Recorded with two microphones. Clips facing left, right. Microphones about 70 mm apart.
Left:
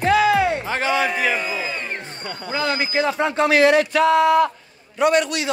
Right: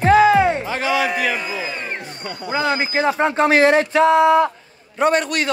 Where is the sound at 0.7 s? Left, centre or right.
Left.